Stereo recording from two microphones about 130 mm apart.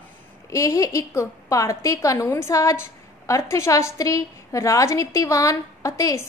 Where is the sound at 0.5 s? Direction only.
25° left (ahead or behind).